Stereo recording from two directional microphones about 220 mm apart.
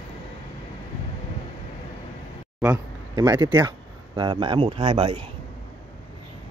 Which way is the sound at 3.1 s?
20° right (ahead or behind).